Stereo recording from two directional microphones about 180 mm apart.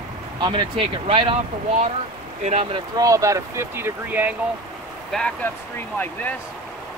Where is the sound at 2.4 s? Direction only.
35° right (ahead or behind).